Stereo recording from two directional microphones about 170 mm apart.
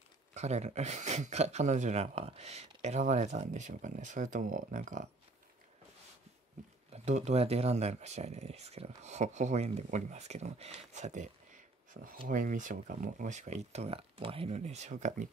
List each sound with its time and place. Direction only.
0.3 s speech: 40° right (ahead or behind)
6.9 s speech: 40° right (ahead or behind)